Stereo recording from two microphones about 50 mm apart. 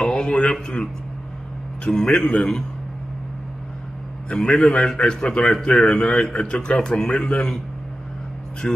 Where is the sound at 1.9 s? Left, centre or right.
Left.